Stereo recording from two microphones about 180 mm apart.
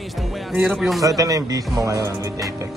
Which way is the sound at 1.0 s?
20° right (ahead or behind).